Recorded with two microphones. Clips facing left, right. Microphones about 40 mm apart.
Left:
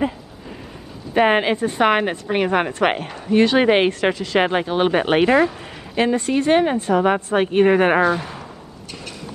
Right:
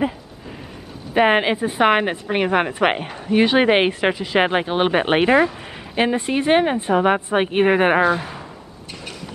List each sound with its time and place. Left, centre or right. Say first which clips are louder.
1.1 s a woman's voice: even; centre